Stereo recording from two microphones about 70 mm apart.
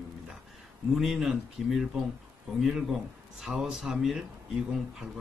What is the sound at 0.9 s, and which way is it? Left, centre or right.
Speech, centre.